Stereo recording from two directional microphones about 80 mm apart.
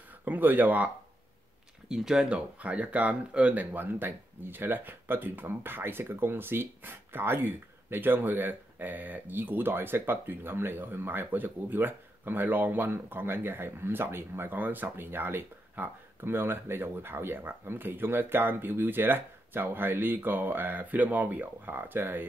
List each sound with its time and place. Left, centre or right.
0.2 s speech: right
1.9 s speech: centre; by 22.3 s right